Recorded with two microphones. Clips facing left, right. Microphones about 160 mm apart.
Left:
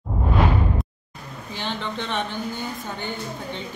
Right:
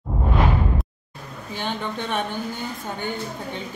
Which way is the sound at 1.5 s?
50° right (ahead or behind).